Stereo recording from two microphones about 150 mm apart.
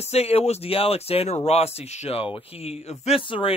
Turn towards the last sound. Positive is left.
turn(degrees=35)  # may be behind; listen again after turning